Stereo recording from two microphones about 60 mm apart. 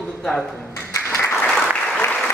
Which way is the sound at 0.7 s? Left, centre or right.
Left.